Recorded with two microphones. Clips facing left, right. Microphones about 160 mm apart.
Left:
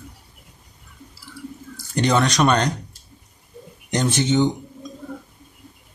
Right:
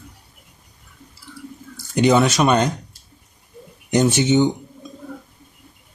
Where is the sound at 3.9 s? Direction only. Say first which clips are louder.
Right 4 dB; 10° right (ahead or behind).